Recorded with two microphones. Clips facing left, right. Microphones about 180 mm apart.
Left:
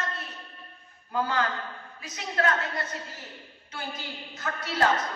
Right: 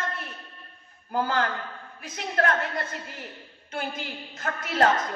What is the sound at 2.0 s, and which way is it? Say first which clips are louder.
Speech: right 5 dB; 55° right (ahead or behind).